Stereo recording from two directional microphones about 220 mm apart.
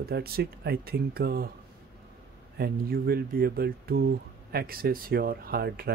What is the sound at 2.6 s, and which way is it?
Speech, 45° right (ahead or behind).